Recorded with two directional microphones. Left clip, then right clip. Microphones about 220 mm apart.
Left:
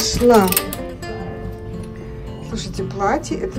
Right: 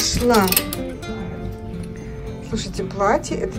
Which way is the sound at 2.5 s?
10° left (ahead or behind).